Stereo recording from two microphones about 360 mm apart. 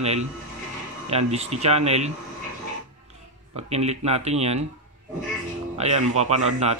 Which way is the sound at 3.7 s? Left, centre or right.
Centre.